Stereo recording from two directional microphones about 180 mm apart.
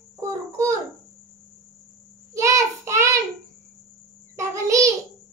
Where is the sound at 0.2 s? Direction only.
20° right (ahead or behind).